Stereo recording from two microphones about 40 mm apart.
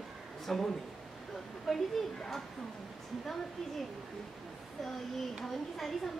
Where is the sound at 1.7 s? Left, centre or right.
Centre.